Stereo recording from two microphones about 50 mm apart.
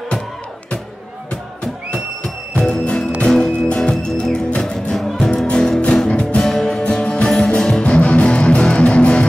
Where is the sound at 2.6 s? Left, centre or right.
Left.